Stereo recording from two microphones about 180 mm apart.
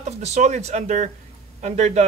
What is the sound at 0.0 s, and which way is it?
A man's voice, 40° right (ahead or behind).